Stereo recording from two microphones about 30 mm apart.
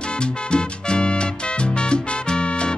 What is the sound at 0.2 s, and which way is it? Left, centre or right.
Music, left.